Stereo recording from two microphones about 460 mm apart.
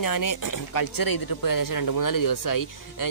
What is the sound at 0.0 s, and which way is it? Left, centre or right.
Speech, left.